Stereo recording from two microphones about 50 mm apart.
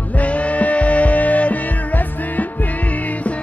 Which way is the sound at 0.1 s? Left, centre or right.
Left.